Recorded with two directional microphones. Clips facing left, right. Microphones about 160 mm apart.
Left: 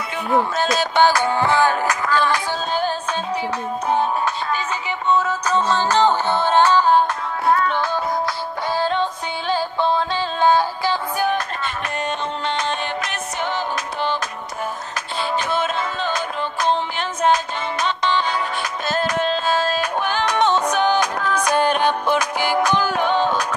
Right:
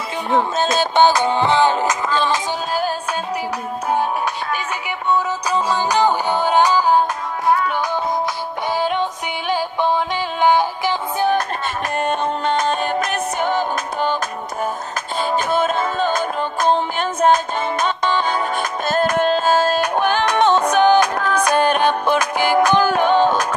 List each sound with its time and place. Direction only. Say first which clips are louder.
0.3 s music: right 1 dB; 25° right (ahead or behind)
5.1 s music: even; 10° right (ahead or behind)
11.3 s music: right 4 dB; 50° right (ahead or behind)
15.1 s music: right 3 dB; 45° right (ahead or behind)